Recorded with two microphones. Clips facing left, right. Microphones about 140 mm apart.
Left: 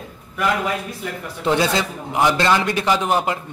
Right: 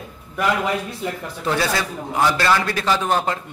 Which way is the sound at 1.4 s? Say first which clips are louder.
Left 3 dB; 20° left (ahead or behind).